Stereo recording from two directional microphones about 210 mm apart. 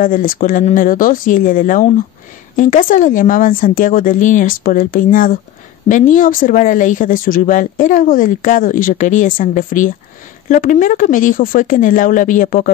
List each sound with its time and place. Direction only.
0.0 s speech: 40° left (ahead or behind)